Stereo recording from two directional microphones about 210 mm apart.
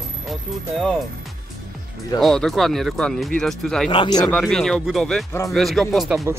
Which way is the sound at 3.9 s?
20° left (ahead or behind).